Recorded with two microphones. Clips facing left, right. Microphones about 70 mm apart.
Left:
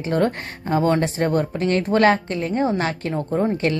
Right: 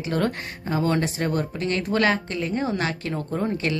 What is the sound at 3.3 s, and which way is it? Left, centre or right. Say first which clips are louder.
Speech: left 6 dB; left.